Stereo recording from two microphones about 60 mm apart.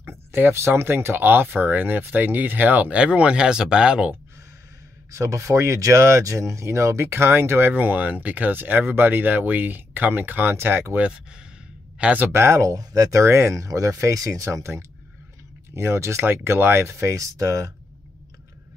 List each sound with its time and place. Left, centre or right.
0.0 s speech: right
3.0 s speech: centre
5.1 s speech: right
12.0 s speech: right
12.3 s speech: right
12.6 s speech: right
16.3 s speech: right